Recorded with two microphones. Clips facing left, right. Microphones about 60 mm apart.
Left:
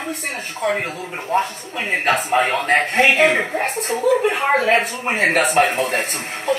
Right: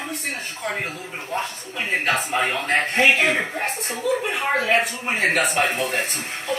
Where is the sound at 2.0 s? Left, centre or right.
Left.